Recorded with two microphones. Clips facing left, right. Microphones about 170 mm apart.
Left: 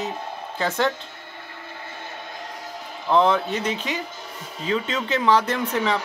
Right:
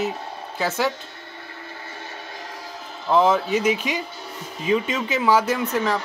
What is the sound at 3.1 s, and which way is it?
Speech, 5° right (ahead or behind).